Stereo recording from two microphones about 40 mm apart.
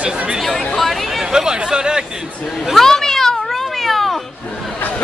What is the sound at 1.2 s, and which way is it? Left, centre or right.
Chatter, centre.